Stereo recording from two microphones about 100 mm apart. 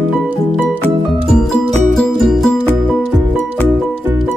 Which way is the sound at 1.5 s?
5° left (ahead or behind).